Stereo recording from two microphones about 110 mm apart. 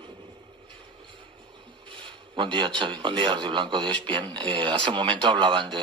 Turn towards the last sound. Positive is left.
turn(degrees=-45)  # may be behind; listen again after turning